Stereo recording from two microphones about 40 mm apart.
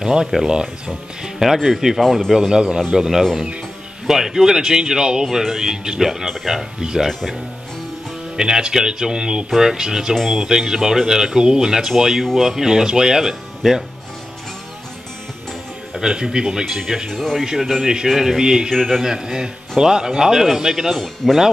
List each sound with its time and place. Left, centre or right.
0.0 s speech: centre
2.0 s speech: centre
2.3 s speech: centre
8.4 s speech: centre
15.9 s speech: centre
17.1 s speech: centre
17.8 s speech: centre
18.7 s speech: centre
18.9 s speech: centre
21.0 s speech: centre